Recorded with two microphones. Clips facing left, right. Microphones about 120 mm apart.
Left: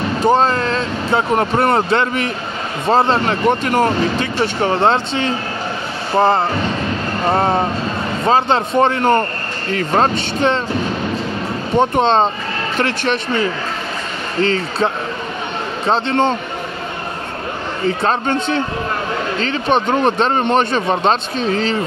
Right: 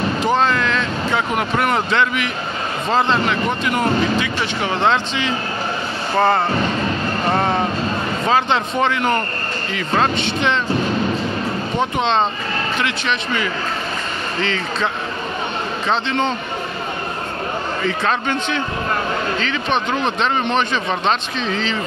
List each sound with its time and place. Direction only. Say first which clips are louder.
0.2 s speech: left 5 dB; 40° left (ahead or behind)
6.1 s speech: left 2 dB; 30° left (ahead or behind)
11.9 s speech: left 4 dB; 45° left (ahead or behind)
14.4 s speech: left 6 dB; 40° left (ahead or behind)
15.9 s speech: left 4 dB; 45° left (ahead or behind)
17.8 s speech: left 4 dB; 40° left (ahead or behind)